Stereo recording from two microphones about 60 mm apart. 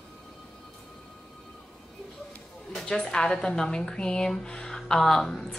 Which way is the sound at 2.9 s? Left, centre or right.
Centre.